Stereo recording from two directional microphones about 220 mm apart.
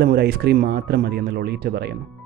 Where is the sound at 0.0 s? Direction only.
45° right (ahead or behind).